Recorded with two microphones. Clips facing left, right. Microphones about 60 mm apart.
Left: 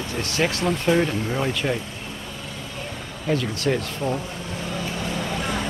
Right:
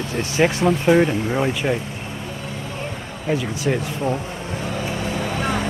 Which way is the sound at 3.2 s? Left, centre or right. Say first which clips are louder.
Right 1 dB; centre.